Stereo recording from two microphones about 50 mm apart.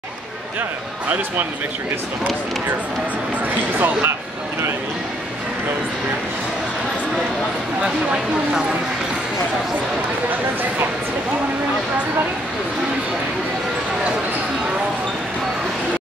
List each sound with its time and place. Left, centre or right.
3.7 s speech: right
7.8 s speech: centre